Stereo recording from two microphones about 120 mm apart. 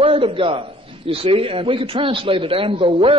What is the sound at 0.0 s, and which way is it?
A man's voice, 50° right (ahead or behind).